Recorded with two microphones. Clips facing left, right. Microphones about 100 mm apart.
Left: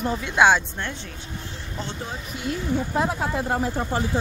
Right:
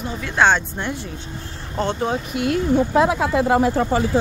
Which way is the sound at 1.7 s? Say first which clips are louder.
Right 12 dB; 65° right (ahead or behind).